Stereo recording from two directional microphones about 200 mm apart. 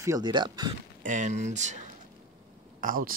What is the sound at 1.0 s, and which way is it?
Speech, 40° right (ahead or behind).